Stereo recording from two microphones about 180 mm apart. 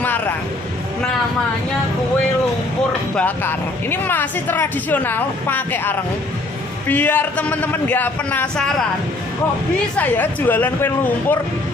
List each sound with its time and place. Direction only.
0.0 s music: 10° left (ahead or behind)
3.2 s speech: 10° left (ahead or behind)
9.9 s speech: 10° left (ahead or behind)